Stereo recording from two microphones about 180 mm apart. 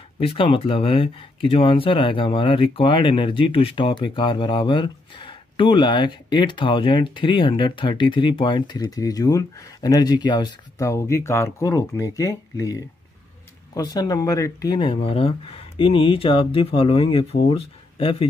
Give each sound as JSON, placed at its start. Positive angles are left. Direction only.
{"t": 0.2, "sound": "speech", "side_deg": 30}